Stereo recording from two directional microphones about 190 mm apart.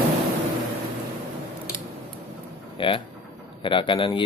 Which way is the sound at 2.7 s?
25° left (ahead or behind).